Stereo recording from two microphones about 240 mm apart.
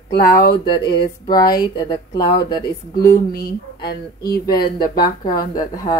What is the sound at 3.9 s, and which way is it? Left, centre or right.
Speech, left.